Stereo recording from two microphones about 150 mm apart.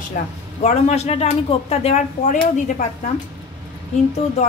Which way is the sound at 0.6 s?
50° left (ahead or behind).